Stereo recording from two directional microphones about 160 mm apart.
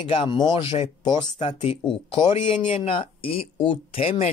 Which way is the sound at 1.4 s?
45° left (ahead or behind).